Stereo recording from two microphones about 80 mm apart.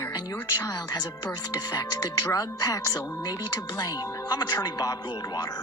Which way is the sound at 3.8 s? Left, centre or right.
Left.